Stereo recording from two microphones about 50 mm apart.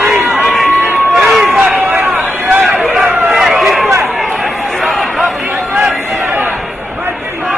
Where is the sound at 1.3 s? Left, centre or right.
Centre.